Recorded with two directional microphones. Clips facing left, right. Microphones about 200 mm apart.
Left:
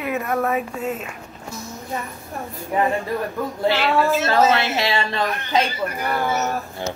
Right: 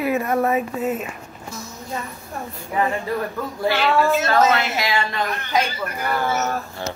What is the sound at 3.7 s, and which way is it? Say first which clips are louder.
Speech: right 1 dB; 30° left (ahead or behind).